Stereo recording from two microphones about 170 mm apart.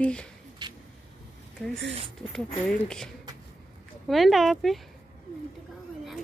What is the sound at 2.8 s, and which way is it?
Speech, 5° left (ahead or behind).